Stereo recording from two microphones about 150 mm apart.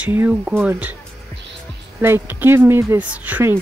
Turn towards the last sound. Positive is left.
turn(degrees=-10)  # may be behind; listen again after turning